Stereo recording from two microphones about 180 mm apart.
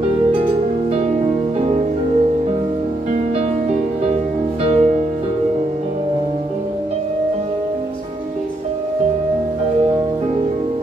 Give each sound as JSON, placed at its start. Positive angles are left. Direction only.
{"t": 1.6, "sound": "music", "side_deg": -35}
{"t": 4.6, "sound": "music", "side_deg": -35}